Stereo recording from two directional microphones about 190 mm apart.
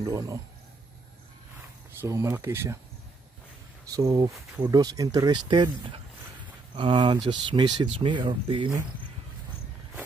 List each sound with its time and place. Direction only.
0.0 s speech: 15° right (ahead or behind)
2.0 s speech: 15° right (ahead or behind)
3.9 s speech: 20° right (ahead or behind)